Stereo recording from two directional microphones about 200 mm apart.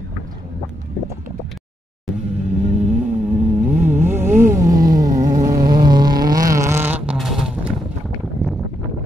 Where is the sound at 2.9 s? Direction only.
10° right (ahead or behind).